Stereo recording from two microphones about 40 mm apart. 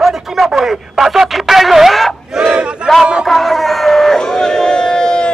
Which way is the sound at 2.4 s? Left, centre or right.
Right.